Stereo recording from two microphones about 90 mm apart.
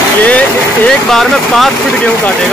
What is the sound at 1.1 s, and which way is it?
Speech, 5° left (ahead or behind).